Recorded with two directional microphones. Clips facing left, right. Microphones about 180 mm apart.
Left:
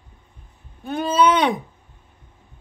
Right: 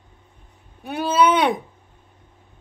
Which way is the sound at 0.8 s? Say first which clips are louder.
Even; 10° right (ahead or behind).